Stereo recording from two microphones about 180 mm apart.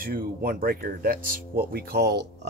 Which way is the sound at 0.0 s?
55° right (ahead or behind).